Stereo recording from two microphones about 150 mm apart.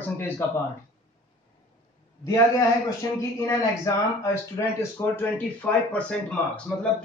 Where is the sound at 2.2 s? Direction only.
20° left (ahead or behind).